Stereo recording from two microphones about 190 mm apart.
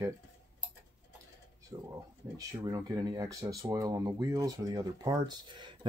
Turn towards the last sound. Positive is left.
turn(degrees=-25)  # may be behind; listen again after turning